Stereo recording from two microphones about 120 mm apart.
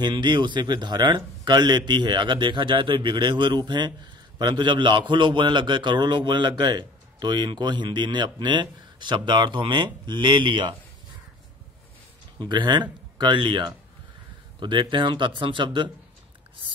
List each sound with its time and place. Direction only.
0.0 s a man's voice: 40° right (ahead or behind)
12.4 s a man's voice: 40° right (ahead or behind)